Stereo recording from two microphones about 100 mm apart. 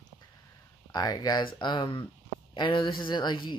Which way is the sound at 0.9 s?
40° left (ahead or behind).